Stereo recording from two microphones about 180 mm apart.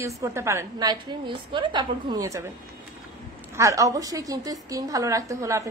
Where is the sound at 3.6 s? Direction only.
20° right (ahead or behind).